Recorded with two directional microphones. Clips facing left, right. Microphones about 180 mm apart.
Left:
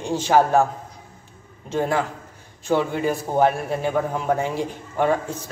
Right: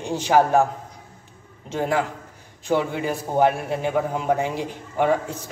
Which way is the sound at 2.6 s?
15° right (ahead or behind).